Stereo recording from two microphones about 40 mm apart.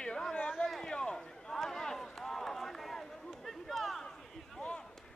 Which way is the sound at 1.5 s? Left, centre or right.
Centre.